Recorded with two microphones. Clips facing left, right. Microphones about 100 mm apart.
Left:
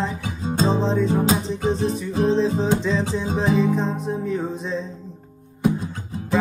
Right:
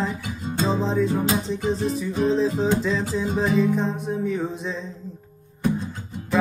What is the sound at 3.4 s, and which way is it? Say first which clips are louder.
Music: left 2 dB; 30° left (ahead or behind).